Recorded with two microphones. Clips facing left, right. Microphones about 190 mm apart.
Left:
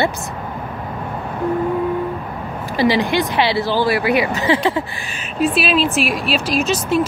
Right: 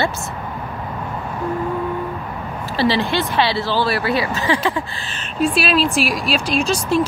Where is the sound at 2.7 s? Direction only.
15° left (ahead or behind).